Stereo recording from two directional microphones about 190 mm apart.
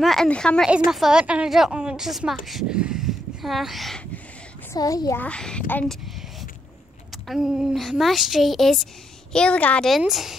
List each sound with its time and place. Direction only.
0.0 s speech: centre (ahead or behind)
4.7 s a child's voice: 20° left (ahead or behind)
7.2 s speech: 5° right (ahead or behind)